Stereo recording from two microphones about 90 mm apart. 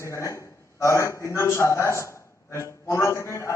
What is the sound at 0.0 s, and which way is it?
A man's voice, 35° left (ahead or behind).